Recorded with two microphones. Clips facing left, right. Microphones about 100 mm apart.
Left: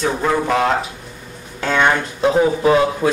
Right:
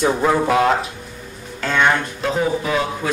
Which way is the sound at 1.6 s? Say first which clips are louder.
Left 1 dB; 10° left (ahead or behind).